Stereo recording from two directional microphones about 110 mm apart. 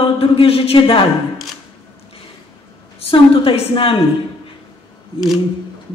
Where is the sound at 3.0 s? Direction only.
60° left (ahead or behind).